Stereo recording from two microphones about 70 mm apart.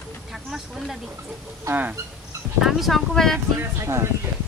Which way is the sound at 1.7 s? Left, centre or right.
Right.